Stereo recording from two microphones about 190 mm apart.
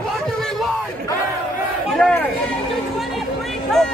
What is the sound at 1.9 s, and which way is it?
Speech, 5° left (ahead or behind).